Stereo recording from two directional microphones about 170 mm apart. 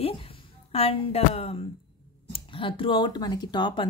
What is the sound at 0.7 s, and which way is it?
A woman's voice, 35° left (ahead or behind).